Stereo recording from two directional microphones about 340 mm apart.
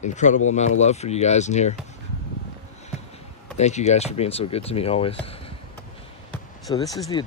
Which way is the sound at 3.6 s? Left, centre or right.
Centre.